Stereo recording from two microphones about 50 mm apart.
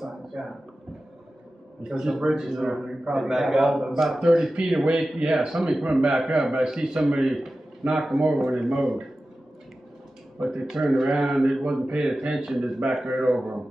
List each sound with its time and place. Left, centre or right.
0.0 s a sound: centre
1.9 s a man's voice: centre
5.6 s a man's voice: centre
5.9 s a man's voice: centre
10.4 s a man's voice: centre
11.3 s a man's voice: centre
11.6 s a man's voice: right